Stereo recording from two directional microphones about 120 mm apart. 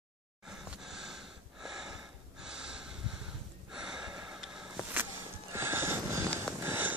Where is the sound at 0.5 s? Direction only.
5° right (ahead or behind).